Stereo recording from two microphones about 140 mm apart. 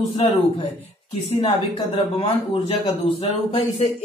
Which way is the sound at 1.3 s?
35° left (ahead or behind).